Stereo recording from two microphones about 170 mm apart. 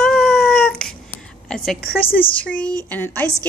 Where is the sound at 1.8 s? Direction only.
60° left (ahead or behind).